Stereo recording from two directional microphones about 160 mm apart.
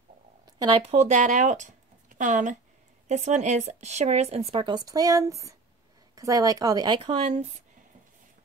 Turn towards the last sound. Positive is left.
turn(degrees=-40)  # may be behind; listen again after turning